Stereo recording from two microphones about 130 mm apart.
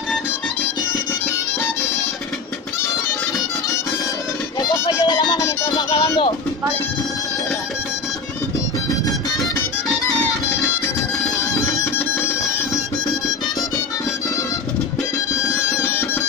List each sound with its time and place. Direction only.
4.6 s music: 35° left (ahead or behind)
11.7 s music: 20° left (ahead or behind)
15.8 s music: 20° left (ahead or behind)